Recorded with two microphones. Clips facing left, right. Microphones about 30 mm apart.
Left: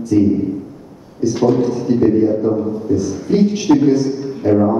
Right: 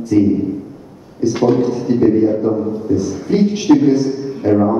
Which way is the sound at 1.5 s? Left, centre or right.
Centre.